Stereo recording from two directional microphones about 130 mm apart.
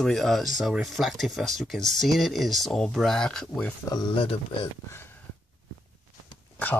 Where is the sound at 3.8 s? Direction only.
30° left (ahead or behind).